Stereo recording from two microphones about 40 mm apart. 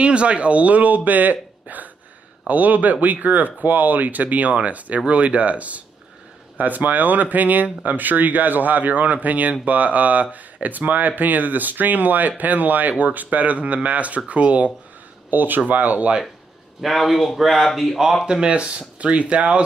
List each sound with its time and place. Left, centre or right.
0.0 s speech: right
6.6 s speech: right
15.2 s speech: right
16.8 s speech: centre
18.2 s speech: right